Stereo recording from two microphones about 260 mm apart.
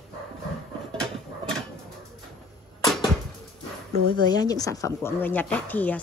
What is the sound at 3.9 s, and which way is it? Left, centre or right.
Speech, right.